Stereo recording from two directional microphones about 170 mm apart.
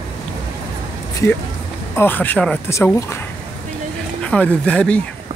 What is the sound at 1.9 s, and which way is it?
Speech, 10° left (ahead or behind).